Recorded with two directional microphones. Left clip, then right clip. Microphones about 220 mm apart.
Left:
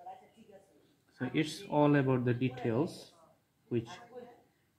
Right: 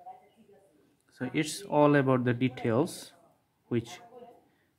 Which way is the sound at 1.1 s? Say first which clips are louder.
Right 2 dB; 10° right (ahead or behind).